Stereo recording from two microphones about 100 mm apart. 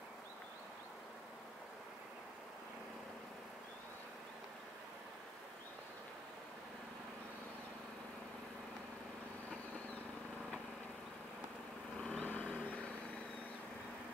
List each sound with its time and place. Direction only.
12.0 s vehicle: 15° left (ahead or behind)